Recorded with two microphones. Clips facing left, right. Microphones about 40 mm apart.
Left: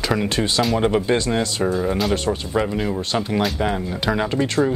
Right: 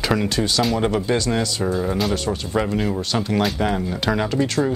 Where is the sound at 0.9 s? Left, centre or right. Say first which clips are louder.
Left 2 dB; left.